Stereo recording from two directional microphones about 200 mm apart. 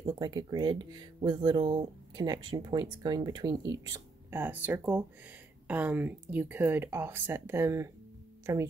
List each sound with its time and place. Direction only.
0.2 s speech: 20° right (ahead or behind)